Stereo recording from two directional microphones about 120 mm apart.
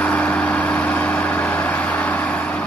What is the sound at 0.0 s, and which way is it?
Vehicle, 10° left (ahead or behind).